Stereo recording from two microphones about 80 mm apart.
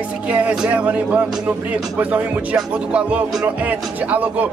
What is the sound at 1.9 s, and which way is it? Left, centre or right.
Music, centre.